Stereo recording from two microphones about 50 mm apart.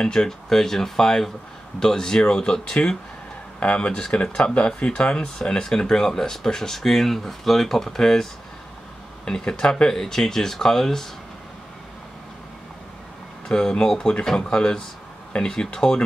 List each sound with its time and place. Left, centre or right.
0.0 s speech: centre
13.5 s speech: centre